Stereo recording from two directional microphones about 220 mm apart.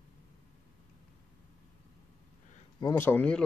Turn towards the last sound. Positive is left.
turn(degrees=5)  # may be behind; listen again after turning